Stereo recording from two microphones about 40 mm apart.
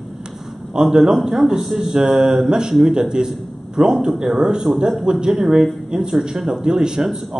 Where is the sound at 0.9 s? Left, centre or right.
Centre.